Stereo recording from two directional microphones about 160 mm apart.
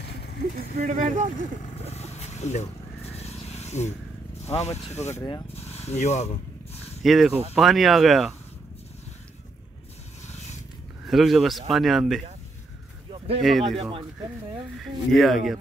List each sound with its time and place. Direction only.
0.0 s vehicle: 90° left
0.7 s speech: 50° right (ahead or behind)
1.4 s vehicle: 45° left (ahead or behind)
4.6 s speech: 15° left (ahead or behind)
5.5 s a sound: 40° left (ahead or behind)
7.0 s speech: centre (ahead or behind)
11.1 s speech: centre (ahead or behind)
13.4 s speech: centre (ahead or behind)
15.1 s speech: centre (ahead or behind)